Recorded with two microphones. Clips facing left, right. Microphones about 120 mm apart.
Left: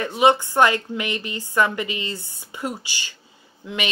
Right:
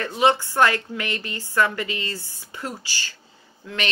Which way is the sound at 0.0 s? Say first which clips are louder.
Left 2 dB; 15° left (ahead or behind).